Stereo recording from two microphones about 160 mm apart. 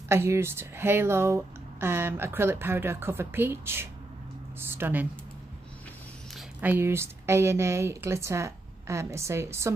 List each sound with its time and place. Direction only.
0.1 s speech: 15° right (ahead or behind)
6.6 s speech: 15° right (ahead or behind)